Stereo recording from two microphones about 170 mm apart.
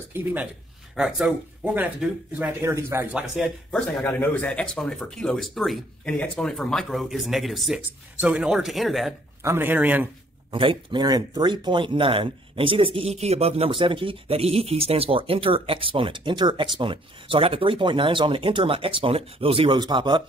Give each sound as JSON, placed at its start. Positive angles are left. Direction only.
{"t": 0.1, "sound": "speech", "side_deg": -10}
{"t": 9.4, "sound": "speech", "side_deg": -15}
{"t": 10.5, "sound": "speech", "side_deg": -30}